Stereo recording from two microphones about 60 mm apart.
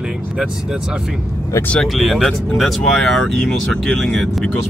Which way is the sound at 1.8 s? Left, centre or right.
Centre.